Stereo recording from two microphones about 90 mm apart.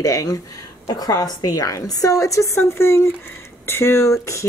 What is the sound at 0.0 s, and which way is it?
A woman's voice, 40° left (ahead or behind).